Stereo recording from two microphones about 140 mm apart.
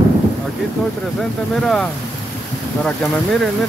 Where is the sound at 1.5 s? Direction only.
5° left (ahead or behind).